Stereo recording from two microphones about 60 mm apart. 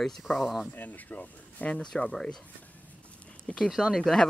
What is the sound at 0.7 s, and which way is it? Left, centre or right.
Speech, left.